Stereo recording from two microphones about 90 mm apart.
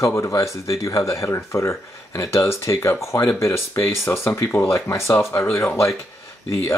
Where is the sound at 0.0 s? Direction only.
35° left (ahead or behind).